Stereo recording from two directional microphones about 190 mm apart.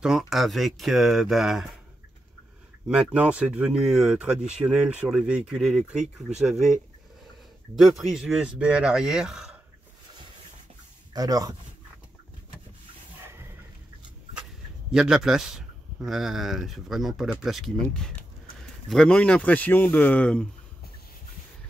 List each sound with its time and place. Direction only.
0.0 s speech: centre (ahead or behind)
2.9 s speech: 5° right (ahead or behind)
11.1 s speech: 20° right (ahead or behind)
14.9 s speech: 5° right (ahead or behind)